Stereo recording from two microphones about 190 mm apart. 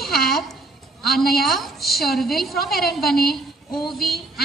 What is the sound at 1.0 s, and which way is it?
A woman's voice, centre (ahead or behind).